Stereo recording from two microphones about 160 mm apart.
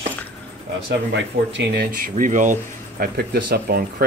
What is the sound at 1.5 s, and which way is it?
Speech, 75° right (ahead or behind).